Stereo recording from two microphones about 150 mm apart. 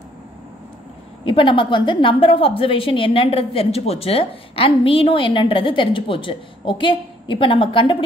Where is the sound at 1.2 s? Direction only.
35° left (ahead or behind).